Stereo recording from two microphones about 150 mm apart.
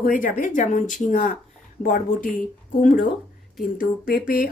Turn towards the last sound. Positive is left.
turn(degrees=75)  # may be behind; listen again after turning